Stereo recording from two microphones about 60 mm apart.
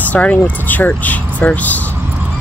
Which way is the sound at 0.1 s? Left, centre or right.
Left.